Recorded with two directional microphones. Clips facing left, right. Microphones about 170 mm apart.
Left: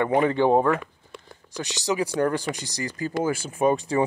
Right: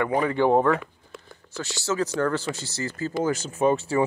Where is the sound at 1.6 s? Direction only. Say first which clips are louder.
Left 1 dB; 15° left (ahead or behind).